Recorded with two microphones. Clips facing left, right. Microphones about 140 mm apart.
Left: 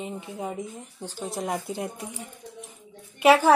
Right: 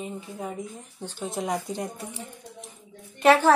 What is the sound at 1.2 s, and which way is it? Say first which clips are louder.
Speech: right 1 dB; centre (ahead or behind).